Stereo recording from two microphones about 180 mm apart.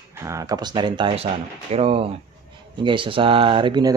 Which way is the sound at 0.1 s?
15° right (ahead or behind).